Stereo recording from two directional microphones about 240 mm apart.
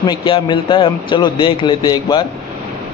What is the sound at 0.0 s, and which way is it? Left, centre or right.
A man's voice, centre.